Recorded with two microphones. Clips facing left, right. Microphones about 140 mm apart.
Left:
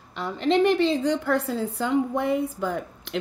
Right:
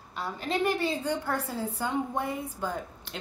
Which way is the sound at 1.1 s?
90° left.